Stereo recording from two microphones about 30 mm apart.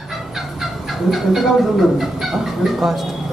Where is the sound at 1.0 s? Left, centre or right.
Centre.